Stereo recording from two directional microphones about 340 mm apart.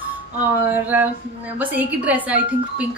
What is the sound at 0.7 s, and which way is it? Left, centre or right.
A woman's voice, centre.